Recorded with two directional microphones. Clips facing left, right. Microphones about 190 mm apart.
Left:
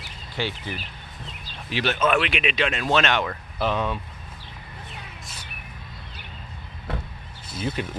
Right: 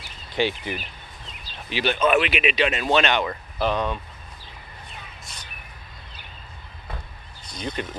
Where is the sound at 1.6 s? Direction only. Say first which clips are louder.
Right 1 dB; centre (ahead or behind).